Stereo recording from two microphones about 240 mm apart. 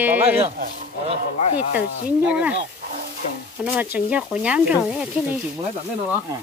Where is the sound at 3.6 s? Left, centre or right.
Centre.